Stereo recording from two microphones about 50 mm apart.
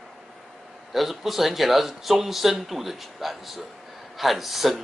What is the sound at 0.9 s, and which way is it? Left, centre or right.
A man's voice, centre.